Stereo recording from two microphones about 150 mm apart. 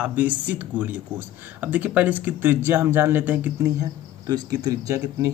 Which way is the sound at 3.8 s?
25° right (ahead or behind).